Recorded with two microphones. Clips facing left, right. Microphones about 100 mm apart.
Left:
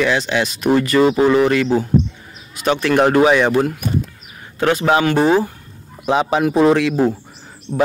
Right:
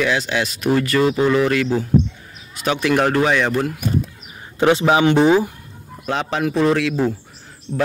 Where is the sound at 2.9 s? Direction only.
10° left (ahead or behind).